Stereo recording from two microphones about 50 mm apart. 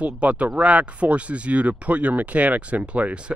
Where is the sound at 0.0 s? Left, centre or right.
Right.